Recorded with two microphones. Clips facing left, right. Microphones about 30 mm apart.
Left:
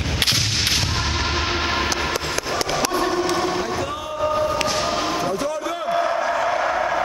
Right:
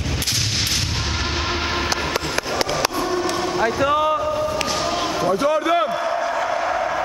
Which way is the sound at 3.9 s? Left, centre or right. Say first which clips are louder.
Right 11 dB; right.